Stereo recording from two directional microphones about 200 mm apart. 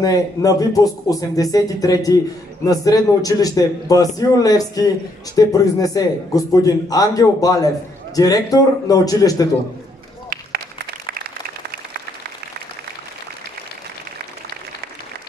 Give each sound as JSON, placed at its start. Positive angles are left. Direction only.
{"t": 0.0, "sound": "a man's voice", "side_deg": 15}